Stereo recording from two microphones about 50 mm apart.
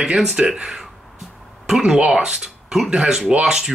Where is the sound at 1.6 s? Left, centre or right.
Centre.